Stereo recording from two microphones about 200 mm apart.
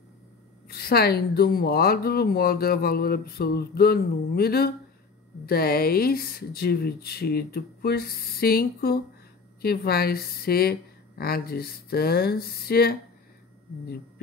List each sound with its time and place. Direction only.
0.7 s a woman's voice: 50° left (ahead or behind)